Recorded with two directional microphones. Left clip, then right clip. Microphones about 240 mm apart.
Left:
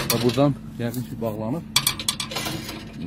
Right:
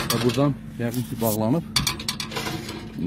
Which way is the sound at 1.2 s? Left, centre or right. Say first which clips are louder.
Right 5 dB; right.